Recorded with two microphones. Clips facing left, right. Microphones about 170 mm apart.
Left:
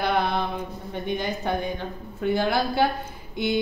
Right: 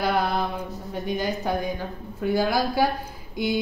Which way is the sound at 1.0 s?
5° right (ahead or behind).